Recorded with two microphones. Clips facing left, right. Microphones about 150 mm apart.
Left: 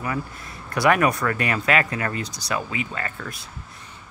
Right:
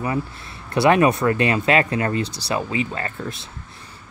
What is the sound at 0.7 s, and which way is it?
Speech, 25° right (ahead or behind).